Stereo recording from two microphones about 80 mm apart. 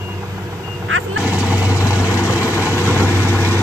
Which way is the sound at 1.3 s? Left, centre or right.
Centre.